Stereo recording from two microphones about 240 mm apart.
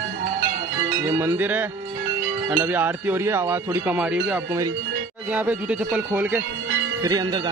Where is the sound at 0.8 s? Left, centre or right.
Centre.